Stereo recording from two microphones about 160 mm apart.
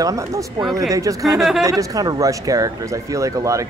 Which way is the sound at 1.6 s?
20° right (ahead or behind).